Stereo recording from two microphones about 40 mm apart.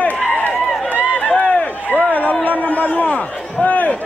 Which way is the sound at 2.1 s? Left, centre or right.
Left.